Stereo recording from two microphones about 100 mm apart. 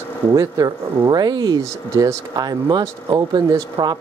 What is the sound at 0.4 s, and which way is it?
Speech, 40° right (ahead or behind).